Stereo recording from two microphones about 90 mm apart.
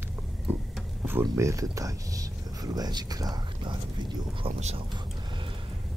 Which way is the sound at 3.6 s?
60° right (ahead or behind).